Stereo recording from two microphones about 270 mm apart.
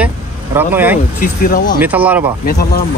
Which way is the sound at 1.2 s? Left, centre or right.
Left.